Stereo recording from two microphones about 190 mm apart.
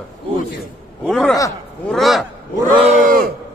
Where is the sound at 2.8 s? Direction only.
40° right (ahead or behind).